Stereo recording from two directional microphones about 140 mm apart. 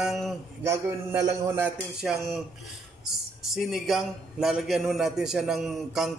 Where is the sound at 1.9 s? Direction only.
5° right (ahead or behind).